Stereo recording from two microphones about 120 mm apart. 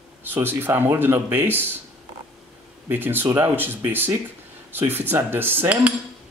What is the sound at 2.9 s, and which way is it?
Speech, 15° right (ahead or behind).